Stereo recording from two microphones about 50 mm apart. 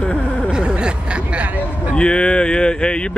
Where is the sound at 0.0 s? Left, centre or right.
Left.